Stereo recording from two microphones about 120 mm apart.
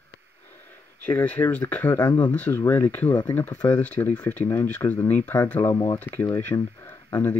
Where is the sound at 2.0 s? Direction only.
40° left (ahead or behind).